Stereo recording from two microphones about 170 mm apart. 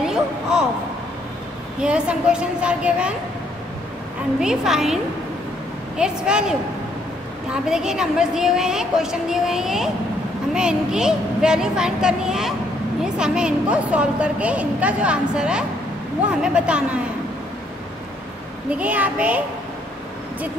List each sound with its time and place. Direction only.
0.0 s speech: 5° right (ahead or behind)
1.8 s a woman's voice: 5° right (ahead or behind)
4.4 s a woman's voice: 5° right (ahead or behind)
7.6 s a woman's voice: 5° right (ahead or behind)
18.7 s a woman's voice: 10° right (ahead or behind)